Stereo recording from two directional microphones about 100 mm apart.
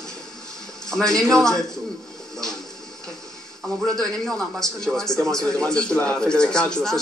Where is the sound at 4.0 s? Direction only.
5° left (ahead or behind).